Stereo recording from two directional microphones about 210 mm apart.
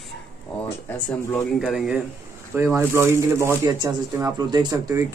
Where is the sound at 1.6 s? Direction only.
5° right (ahead or behind).